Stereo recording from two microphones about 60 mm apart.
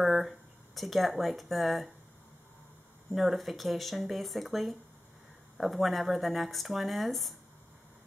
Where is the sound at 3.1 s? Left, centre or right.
Centre.